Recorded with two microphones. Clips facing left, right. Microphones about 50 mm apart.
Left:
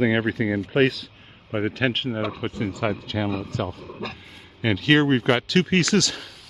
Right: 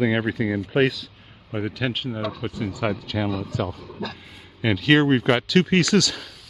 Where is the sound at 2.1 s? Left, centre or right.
Left.